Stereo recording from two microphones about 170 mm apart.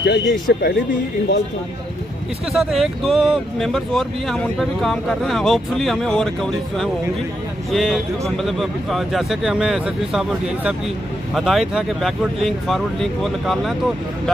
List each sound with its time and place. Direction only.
0.0 s speech: 75° left (ahead or behind)
2.5 s speech: centre (ahead or behind)